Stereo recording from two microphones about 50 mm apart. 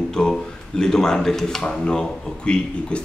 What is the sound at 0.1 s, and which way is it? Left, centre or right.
Speech, centre.